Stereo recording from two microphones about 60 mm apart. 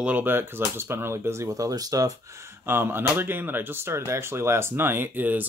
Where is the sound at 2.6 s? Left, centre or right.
Right.